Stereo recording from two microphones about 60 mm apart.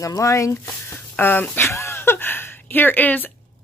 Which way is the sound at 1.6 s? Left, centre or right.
Left.